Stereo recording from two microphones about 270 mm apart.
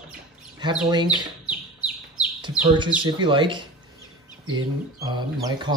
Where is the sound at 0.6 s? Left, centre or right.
Centre.